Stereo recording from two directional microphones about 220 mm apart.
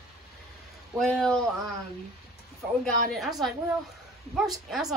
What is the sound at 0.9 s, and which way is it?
Speech, centre (ahead or behind).